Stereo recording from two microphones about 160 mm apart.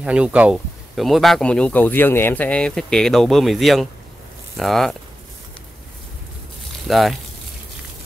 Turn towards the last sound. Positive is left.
turn(degrees=0)  # may be behind; listen again after turning